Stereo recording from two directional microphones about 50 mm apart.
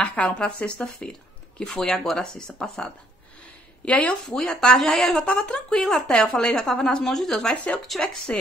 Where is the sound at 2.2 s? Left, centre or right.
Centre.